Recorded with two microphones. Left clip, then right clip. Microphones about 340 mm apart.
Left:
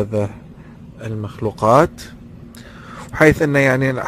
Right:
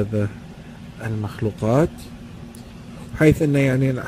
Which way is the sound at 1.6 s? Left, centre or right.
Left.